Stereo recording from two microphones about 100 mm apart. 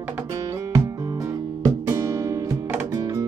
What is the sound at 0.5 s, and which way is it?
Music, 35° right (ahead or behind).